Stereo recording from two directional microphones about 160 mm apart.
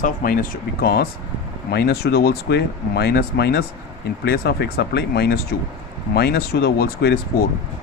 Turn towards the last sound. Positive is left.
turn(degrees=85)